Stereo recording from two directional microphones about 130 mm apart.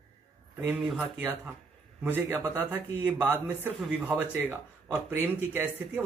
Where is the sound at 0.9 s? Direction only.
10° right (ahead or behind).